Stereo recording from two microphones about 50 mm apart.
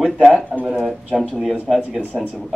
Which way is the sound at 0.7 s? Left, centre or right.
Centre.